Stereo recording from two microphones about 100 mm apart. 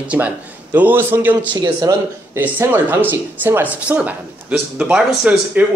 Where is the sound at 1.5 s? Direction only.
40° right (ahead or behind).